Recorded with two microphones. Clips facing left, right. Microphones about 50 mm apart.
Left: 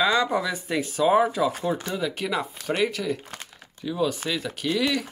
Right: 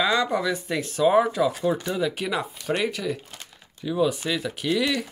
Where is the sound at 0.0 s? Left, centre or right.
Centre.